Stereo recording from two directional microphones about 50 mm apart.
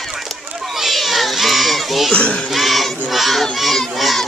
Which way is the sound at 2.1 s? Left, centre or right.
Left.